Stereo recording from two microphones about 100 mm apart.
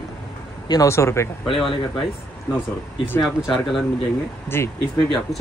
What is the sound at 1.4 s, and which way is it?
Speech, 60° left (ahead or behind).